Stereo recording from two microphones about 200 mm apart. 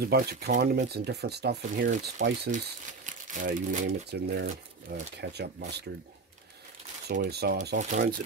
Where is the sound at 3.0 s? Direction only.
40° right (ahead or behind).